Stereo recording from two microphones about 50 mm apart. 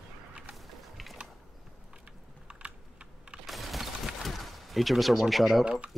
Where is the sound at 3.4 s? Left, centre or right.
Centre.